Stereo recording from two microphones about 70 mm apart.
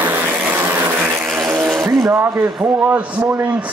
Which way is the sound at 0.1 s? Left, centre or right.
Right.